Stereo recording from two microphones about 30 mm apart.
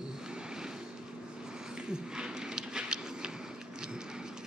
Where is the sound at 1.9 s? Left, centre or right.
Right.